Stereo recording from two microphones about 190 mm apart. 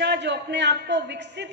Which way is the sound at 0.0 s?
65° right (ahead or behind).